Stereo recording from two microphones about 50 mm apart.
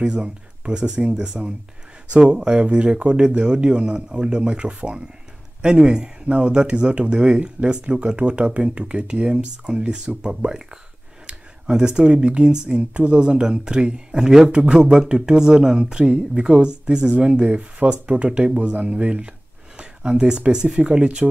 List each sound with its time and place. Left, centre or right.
0.0 s speech: centre
14.6 s speech: right